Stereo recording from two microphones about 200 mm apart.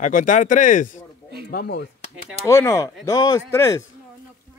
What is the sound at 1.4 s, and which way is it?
Speech, 50° left (ahead or behind).